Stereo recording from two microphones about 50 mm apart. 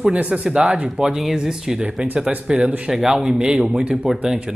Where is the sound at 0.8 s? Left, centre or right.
Centre.